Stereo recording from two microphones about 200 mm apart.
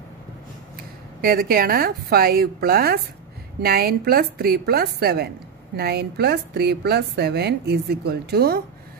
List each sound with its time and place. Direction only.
0.7 s a woman's voice: 45° right (ahead or behind)